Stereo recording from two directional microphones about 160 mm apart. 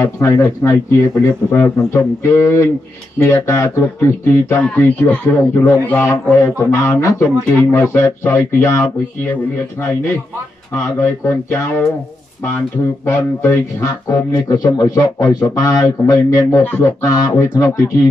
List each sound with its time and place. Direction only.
0.0 s speech: 15° left (ahead or behind)
13.0 s speech: 15° left (ahead or behind)